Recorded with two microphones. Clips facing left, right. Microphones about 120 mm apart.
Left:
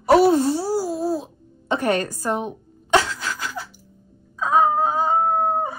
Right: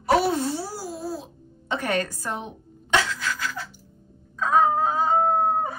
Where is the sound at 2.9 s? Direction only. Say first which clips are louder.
Left 4 dB; 30° left (ahead or behind).